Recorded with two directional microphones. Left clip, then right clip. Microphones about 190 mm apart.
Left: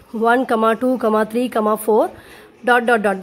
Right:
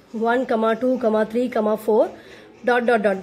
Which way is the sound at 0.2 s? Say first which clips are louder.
Left 4 dB; 25° left (ahead or behind).